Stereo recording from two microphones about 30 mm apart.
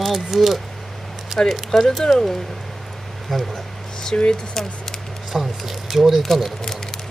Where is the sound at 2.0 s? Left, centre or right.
Centre.